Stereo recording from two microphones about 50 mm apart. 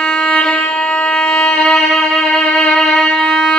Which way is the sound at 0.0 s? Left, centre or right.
Centre.